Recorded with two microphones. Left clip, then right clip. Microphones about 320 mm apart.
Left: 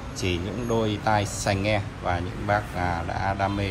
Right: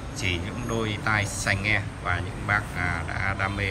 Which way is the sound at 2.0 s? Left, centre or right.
Right.